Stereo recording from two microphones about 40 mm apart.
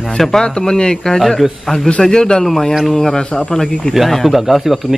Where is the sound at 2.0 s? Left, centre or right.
Centre.